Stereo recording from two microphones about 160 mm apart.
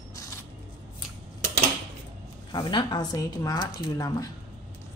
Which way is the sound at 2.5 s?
25° left (ahead or behind).